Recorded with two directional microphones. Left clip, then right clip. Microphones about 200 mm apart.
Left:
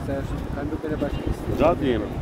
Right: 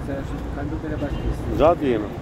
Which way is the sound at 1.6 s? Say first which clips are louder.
Right 3 dB; 45° right (ahead or behind).